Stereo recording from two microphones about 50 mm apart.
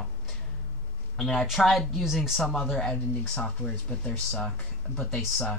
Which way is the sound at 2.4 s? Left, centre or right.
Centre.